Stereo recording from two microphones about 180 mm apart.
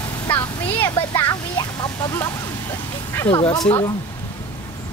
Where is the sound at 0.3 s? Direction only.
10° left (ahead or behind).